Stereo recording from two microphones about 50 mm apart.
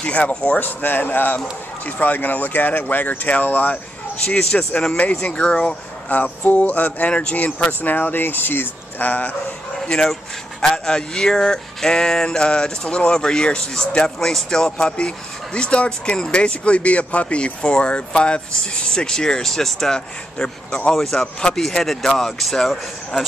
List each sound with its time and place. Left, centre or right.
0.0 s speech: left
6.1 s speech: left
9.8 s speech: centre
20.3 s speech: left
20.9 s speech: centre